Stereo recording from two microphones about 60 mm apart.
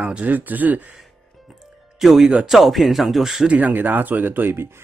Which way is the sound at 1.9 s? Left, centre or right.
Centre.